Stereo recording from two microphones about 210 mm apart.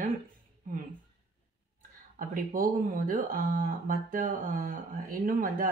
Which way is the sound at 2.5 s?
40° right (ahead or behind).